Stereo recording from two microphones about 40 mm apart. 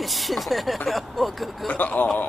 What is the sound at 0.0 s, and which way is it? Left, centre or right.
Speech, centre.